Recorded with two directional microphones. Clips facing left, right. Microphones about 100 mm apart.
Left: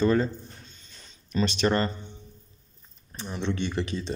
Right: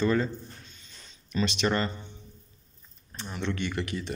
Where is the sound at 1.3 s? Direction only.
40° left (ahead or behind).